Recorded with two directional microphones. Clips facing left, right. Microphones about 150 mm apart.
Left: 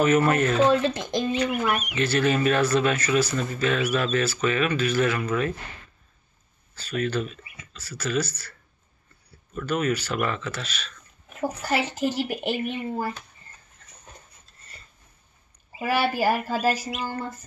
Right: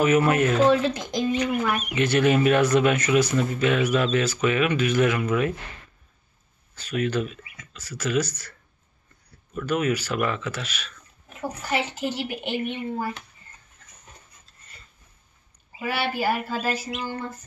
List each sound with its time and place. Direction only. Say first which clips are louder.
0.0 s speech: right 1 dB; 10° right (ahead or behind)
0.7 s speech: right 1 dB; 25° left (ahead or behind)
1.5 s speech: even; 10° left (ahead or behind)
2.0 s speech: right 4 dB; 15° right (ahead or behind)
6.7 s speech: right 1 dB; 15° right (ahead or behind)
9.6 s speech: right 1 dB; 10° right (ahead or behind)
11.7 s speech: left 1 dB; 40° left (ahead or behind)
15.9 s speech: left 3 dB; 40° left (ahead or behind)